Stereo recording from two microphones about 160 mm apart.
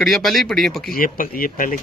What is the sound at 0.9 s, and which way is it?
Speech, 60° left (ahead or behind).